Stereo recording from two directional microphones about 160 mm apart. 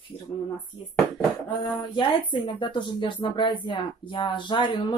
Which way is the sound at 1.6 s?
30° left (ahead or behind).